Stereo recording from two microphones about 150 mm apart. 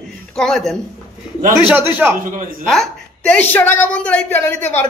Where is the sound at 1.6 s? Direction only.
10° right (ahead or behind).